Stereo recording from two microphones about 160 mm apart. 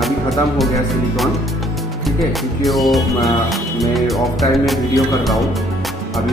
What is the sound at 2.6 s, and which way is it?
Music, centre (ahead or behind).